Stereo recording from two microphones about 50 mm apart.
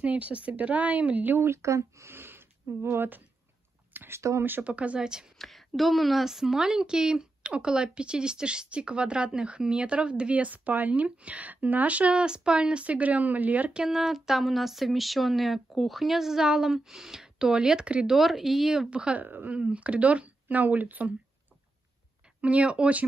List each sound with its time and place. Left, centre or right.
0.0 s speech: right
1.4 s speech: right
2.0 s a sound: right
4.1 s speech: right
4.4 s speech: right
4.6 s a woman's voice: right
5.0 s speech: centre
5.4 s a woman's voice: centre; by 13.7 s right
13.7 s speech: centre
18.0 s speech: centre
18.9 s a woman's voice: right
19.2 s speech: right
19.5 s a woman's voice: right
22.4 s a woman's voice: right